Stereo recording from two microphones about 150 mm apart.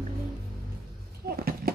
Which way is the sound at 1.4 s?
80° right.